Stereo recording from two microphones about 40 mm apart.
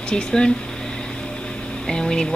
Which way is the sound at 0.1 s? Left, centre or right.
Left.